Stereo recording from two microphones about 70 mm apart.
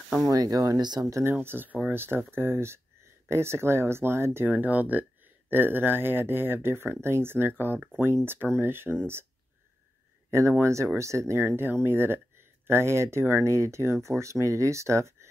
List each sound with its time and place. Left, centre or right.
0.3 s speech: right
1.1 s speech: right
4.5 s speech: right
10.6 s speech: right